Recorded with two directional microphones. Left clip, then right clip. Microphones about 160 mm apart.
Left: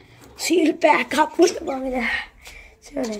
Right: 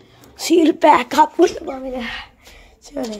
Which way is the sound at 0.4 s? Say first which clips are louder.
Right 4 dB; 25° right (ahead or behind).